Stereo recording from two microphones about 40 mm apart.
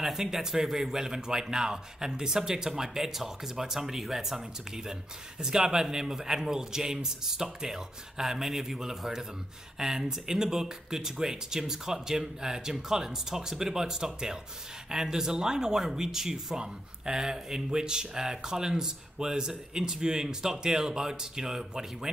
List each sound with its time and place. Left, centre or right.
0.0 s speech: centre